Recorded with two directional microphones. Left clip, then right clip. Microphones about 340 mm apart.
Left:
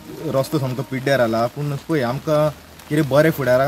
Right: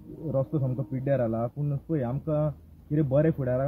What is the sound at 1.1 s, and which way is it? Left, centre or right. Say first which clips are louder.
Speech: left 10 dB; centre.